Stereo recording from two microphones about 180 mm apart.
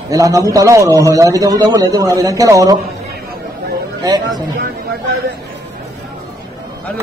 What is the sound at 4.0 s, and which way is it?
Speech, 20° right (ahead or behind).